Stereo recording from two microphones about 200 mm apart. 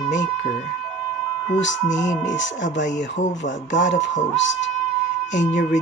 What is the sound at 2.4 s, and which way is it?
Speech, 40° left (ahead or behind).